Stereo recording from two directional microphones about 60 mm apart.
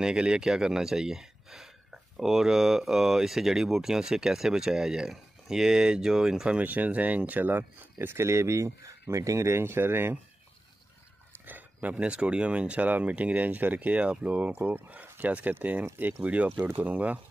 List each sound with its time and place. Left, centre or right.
0.0 s speech: centre
6.6 s speech: right
11.4 s a sound: right
11.9 s speech: centre